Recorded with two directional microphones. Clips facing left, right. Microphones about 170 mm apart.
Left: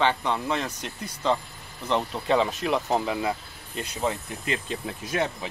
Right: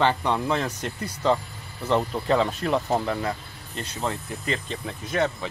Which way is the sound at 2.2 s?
5° left (ahead or behind).